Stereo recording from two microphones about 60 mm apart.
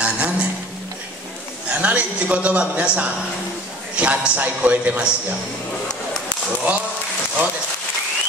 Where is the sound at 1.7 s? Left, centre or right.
Right.